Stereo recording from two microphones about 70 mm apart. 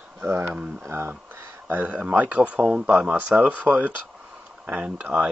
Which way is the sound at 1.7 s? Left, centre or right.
Right.